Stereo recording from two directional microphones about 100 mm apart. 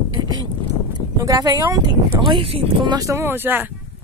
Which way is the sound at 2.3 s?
70° right (ahead or behind).